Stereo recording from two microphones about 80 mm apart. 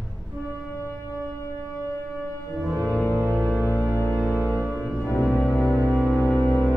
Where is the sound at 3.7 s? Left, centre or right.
Left.